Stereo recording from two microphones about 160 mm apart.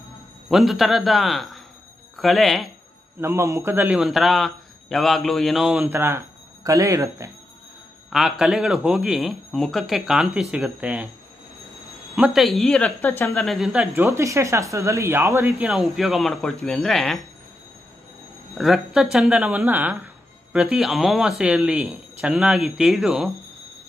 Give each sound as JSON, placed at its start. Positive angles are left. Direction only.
{"t": 0.5, "sound": "speech", "side_deg": 0}
{"t": 3.2, "sound": "a man's voice", "side_deg": -20}
{"t": 4.0, "sound": "speech", "side_deg": 0}
{"t": 5.9, "sound": "speech", "side_deg": -15}
{"t": 8.1, "sound": "speech", "side_deg": -5}
{"t": 12.2, "sound": "speech", "side_deg": 0}
{"t": 13.9, "sound": "speech", "side_deg": -15}
{"t": 15.6, "sound": "speech", "side_deg": 0}
{"t": 18.6, "sound": "speech", "side_deg": 0}